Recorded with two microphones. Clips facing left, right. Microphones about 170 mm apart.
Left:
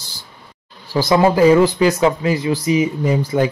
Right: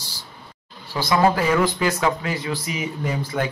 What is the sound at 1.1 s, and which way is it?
Speech, 30° left (ahead or behind).